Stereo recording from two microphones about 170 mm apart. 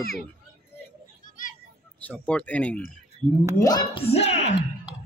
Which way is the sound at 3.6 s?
25° left (ahead or behind).